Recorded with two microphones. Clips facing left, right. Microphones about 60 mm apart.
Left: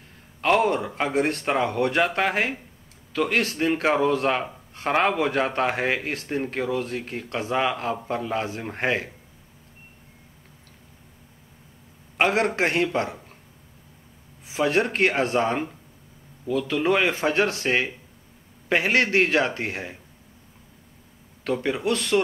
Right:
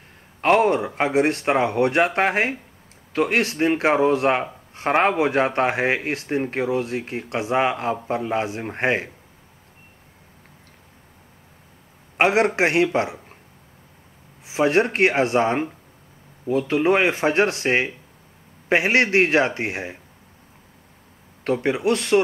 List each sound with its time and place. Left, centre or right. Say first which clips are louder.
0.4 s a man's voice: right 3 dB; right
1.1 s a man's voice: right 4 dB; right
8.5 s a man's voice: right 3 dB; centre
8.7 s a man's voice: right 3 dB; right
12.2 s a man's voice: right 3 dB; centre
14.5 s a man's voice: right 4 dB; right
16.4 s a man's voice: right 4 dB; right; by 20.0 s centre
21.8 s speech: right 4 dB; right